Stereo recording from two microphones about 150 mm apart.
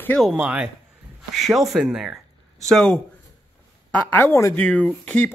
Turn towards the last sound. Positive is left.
turn(degrees=10)  # may be behind; listen again after turning